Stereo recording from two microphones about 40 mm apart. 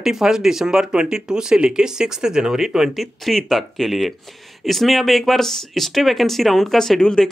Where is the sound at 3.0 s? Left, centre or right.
Centre.